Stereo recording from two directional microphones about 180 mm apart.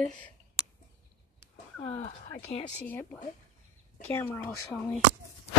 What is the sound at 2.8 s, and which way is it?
Speech, 10° left (ahead or behind).